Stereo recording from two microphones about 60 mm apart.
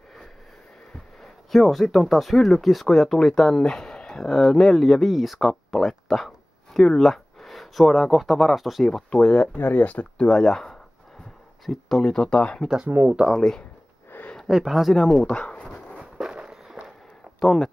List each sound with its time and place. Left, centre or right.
1.2 s speech: centre
9.6 s speech: left
10.2 s speech: centre
12.0 s speech: centre
12.8 s speech: right
13.3 s speech: centre
14.1 s a sound: left
14.5 s speech: centre
15.1 s dog: centre
16.0 s walk: centre
17.4 s speech: centre